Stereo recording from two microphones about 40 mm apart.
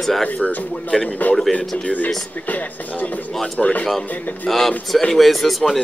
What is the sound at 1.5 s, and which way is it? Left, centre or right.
Speech, left.